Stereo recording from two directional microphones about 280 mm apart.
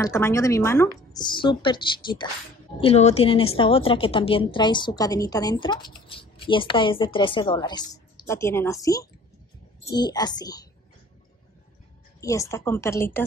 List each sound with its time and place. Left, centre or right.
0.0 s a woman's voice: centre
12.2 s a woman's voice: centre